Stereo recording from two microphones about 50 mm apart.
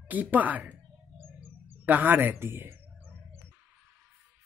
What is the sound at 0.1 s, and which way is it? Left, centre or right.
Speech, right.